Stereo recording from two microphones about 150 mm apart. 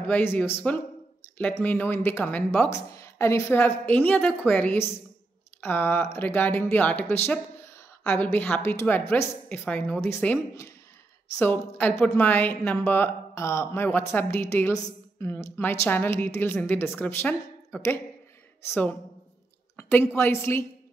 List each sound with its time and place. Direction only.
0.1 s a woman's voice: 10° left (ahead or behind)